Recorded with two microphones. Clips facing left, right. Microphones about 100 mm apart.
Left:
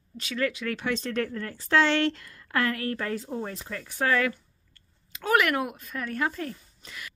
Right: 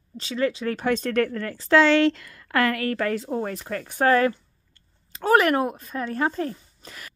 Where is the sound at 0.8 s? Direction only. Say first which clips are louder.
Right 7 dB; 50° right (ahead or behind); by 3.5 s 75° right (ahead or behind).